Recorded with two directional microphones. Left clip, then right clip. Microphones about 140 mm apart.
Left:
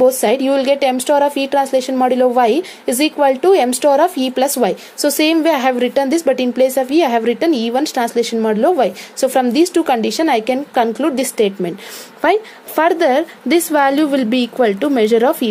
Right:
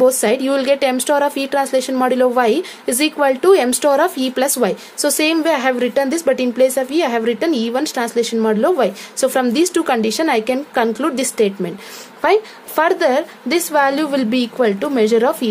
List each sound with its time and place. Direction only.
0.0 s a woman's voice: 15° left (ahead or behind)